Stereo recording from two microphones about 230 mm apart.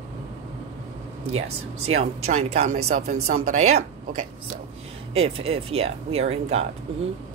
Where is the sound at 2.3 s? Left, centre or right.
Right.